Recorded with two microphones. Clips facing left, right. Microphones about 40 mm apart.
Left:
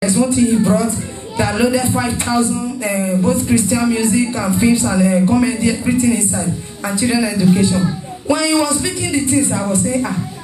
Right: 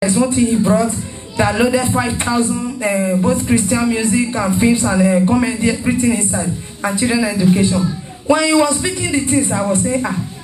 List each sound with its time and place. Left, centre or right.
0.0 s a man's voice: right